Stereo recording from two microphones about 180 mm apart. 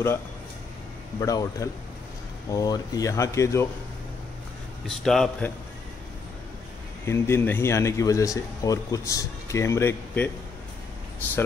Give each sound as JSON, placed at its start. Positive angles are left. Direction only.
{"t": 1.2, "sound": "speech", "side_deg": 20}
{"t": 4.8, "sound": "a man's voice", "side_deg": 0}
{"t": 7.1, "sound": "speech", "side_deg": 15}